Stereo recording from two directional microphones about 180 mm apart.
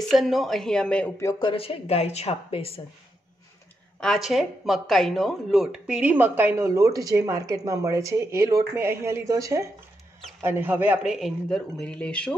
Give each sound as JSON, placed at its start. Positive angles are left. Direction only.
{"t": 0.1, "sound": "speech", "side_deg": 0}
{"t": 1.2, "sound": "speech", "side_deg": 30}
{"t": 4.0, "sound": "speech", "side_deg": 0}